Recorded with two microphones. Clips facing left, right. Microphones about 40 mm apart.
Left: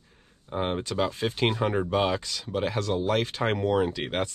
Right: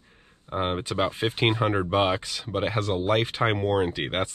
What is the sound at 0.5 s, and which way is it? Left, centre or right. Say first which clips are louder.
Speech: right 1 dB; right.